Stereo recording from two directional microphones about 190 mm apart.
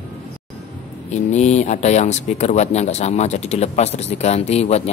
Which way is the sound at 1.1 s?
35° left (ahead or behind).